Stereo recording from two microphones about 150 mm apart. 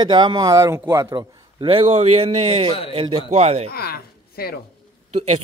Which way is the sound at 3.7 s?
90° left.